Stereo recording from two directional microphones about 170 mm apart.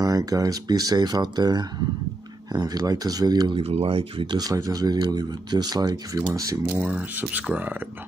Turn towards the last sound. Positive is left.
turn(degrees=-10)  # may be behind; listen again after turning